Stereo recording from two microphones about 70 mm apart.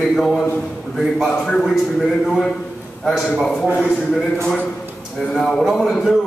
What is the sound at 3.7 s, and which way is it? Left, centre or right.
Speech, centre.